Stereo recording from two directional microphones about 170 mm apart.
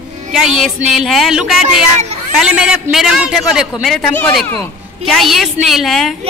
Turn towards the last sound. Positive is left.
turn(degrees=0)  # may be behind; listen again after turning